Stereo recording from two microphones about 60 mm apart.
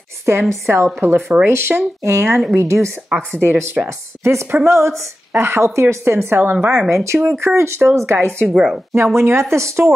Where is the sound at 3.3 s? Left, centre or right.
Right.